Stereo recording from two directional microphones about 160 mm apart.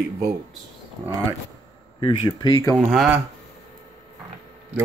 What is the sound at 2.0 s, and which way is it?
Speech, 30° left (ahead or behind).